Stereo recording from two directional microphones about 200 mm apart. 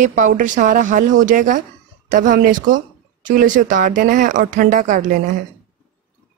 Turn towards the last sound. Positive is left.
turn(degrees=-40)  # may be behind; listen again after turning